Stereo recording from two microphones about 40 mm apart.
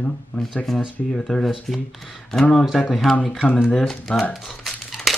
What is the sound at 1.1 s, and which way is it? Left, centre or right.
Speech, centre.